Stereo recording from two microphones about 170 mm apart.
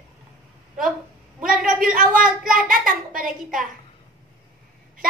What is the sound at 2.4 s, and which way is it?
Speech, 55° right (ahead or behind).